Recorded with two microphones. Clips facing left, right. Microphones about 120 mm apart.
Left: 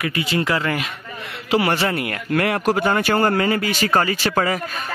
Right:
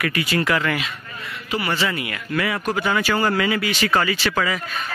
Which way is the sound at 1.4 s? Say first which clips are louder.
Left 5 dB; 75° left (ahead or behind).